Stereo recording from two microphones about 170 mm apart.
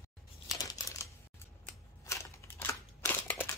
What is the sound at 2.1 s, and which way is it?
Scissors, 15° left (ahead or behind).